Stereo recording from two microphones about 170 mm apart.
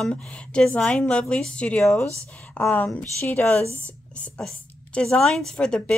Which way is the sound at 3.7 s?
15° right (ahead or behind).